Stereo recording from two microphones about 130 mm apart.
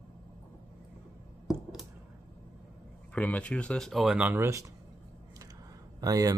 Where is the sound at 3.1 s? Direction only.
10° left (ahead or behind).